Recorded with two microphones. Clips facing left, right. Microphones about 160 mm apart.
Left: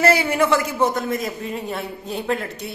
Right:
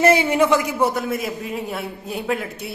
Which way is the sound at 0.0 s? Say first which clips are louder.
Right 2 dB; 20° right (ahead or behind).